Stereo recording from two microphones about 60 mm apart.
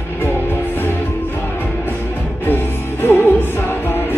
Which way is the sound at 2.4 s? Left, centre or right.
Left.